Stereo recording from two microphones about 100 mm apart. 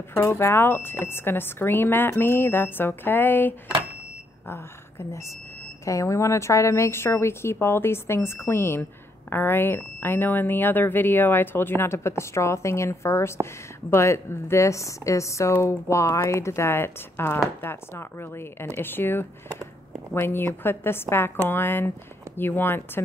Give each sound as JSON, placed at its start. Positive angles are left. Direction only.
{"t": 0.1, "sound": "a woman's voice", "side_deg": 25}